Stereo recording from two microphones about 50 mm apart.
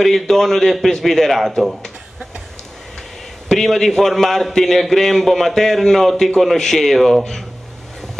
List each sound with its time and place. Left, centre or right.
0.0 s a man's voice: centre
3.4 s a man's voice: centre